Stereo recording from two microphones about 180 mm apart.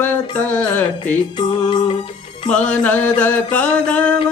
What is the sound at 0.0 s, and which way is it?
Speech, 5° left (ahead or behind).